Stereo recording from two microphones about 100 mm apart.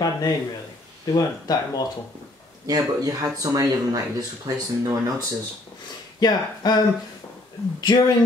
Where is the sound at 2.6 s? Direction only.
35° right (ahead or behind).